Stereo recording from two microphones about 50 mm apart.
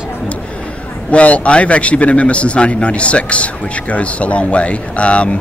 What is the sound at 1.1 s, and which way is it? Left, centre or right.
A man's voice, left.